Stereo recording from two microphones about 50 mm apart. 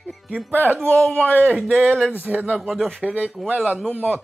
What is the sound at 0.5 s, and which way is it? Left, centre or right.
Speech, right.